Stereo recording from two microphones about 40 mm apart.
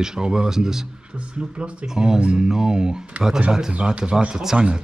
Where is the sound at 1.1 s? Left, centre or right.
Right.